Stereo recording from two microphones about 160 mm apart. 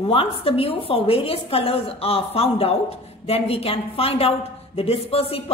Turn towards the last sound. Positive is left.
turn(degrees=35)  # may be behind; listen again after turning